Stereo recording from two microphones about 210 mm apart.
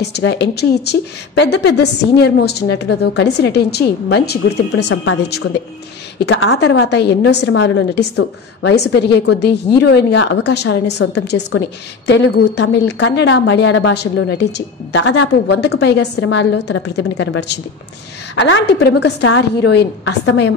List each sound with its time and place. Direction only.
0.0 s a woman's voice: 55° left (ahead or behind)
6.1 s a woman's voice: 55° left (ahead or behind)